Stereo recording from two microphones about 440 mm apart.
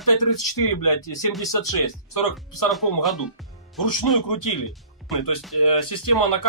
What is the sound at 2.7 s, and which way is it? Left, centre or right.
Speech, centre.